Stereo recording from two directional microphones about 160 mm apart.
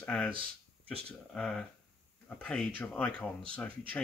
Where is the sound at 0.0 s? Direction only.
10° left (ahead or behind).